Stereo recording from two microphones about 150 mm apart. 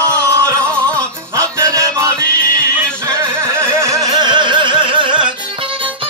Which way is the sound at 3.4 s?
15° right (ahead or behind).